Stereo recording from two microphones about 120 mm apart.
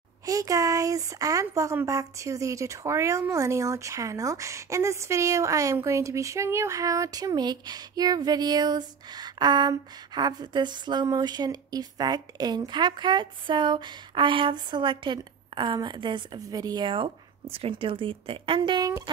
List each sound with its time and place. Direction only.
0.2 s speech: 30° right (ahead or behind); by 18.6 s 50° right (ahead or behind)
18.6 s speech: 35° right (ahead or behind)